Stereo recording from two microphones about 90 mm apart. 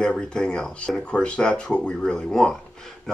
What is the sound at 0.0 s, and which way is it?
Speech, 10° left (ahead or behind).